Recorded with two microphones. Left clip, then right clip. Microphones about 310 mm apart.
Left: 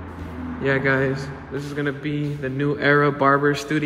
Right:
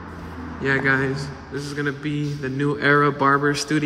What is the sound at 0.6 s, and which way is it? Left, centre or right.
A man's voice, centre.